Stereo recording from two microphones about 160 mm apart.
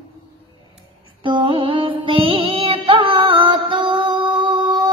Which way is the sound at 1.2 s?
30° right (ahead or behind).